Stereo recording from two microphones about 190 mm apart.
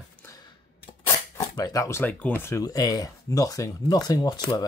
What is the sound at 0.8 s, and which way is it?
Speech, 10° left (ahead or behind).